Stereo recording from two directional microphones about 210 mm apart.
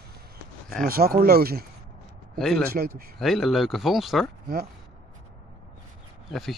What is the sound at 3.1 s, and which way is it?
Speech, centre (ahead or behind).